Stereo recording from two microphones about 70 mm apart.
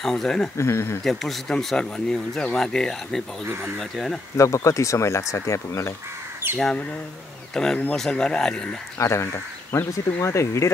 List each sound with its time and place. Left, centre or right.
0.0 s speech: centre
0.6 s speech: left
1.0 s speech: centre
4.4 s speech: left
7.5 s speech: centre
8.9 s speech: left